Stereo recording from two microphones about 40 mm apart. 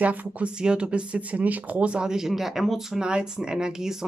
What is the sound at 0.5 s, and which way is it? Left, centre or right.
Speech, right.